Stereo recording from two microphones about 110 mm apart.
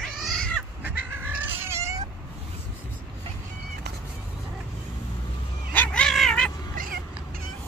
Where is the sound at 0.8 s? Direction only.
20° right (ahead or behind).